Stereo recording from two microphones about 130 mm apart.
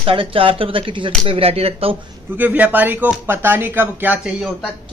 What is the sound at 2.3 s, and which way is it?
Speech, 10° right (ahead or behind).